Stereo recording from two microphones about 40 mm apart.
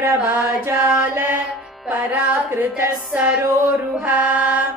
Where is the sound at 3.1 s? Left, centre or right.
Right.